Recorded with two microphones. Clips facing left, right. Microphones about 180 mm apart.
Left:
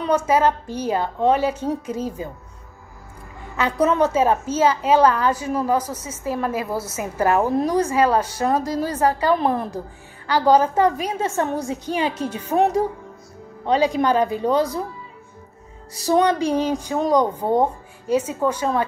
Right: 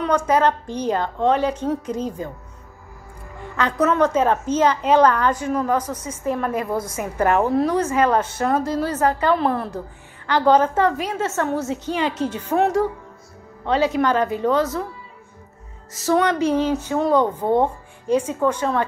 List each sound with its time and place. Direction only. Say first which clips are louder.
0.0 s a woman's voice: even; 10° left (ahead or behind)
3.5 s a woman's voice: even; 10° left (ahead or behind)
7.0 s a woman's voice: even; 30° left (ahead or behind)
7.3 s a woman's voice: even; 10° left (ahead or behind)
7.9 s speech: left 1 dB; 35° left (ahead or behind)
8.2 s a woman's voice: even; 10° left (ahead or behind)
15.9 s a woman's voice: left 1 dB; 15° left (ahead or behind)